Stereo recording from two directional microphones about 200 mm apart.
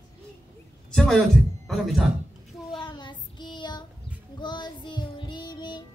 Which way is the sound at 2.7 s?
25° left (ahead or behind).